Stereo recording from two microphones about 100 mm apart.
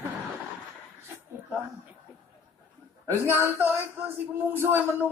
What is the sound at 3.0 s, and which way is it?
Speech, 25° right (ahead or behind).